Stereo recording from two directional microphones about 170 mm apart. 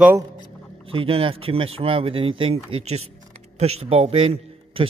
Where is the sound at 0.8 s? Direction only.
35° right (ahead or behind).